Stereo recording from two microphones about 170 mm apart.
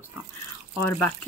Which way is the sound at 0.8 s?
15° left (ahead or behind).